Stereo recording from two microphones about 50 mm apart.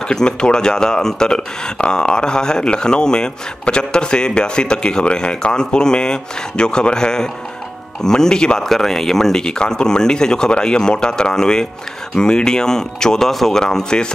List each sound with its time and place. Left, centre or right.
0.1 s speech: centre